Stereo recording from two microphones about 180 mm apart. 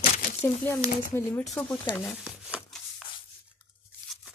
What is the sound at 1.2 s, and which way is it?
Speech, 10° left (ahead or behind).